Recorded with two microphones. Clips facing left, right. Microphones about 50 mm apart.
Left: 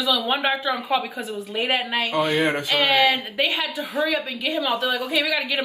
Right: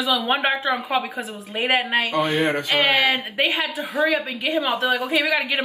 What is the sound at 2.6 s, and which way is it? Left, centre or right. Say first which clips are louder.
A woman's voice: even; centre.